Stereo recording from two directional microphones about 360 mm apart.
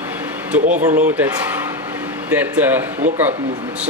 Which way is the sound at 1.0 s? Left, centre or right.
Centre.